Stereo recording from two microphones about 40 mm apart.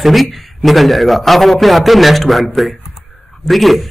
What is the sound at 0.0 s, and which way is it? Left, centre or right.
A man's voice, centre.